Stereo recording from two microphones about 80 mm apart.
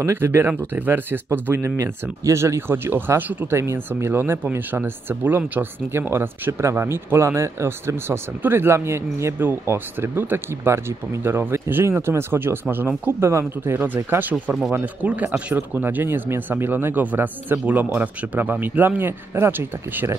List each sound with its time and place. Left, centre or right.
0.0 s speech: right
3.5 s speech: right
14.3 s speech: centre
15.0 s speech: centre